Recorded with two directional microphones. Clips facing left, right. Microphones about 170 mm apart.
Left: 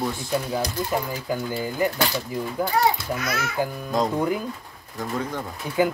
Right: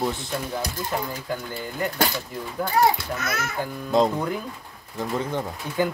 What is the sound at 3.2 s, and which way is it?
Speech, 50° right (ahead or behind).